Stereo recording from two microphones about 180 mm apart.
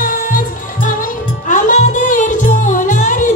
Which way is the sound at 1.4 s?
45° left (ahead or behind).